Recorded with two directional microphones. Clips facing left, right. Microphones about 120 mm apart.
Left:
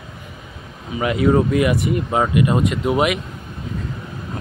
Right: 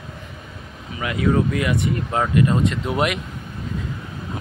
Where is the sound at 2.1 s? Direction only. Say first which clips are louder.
Left 1 dB; 10° left (ahead or behind).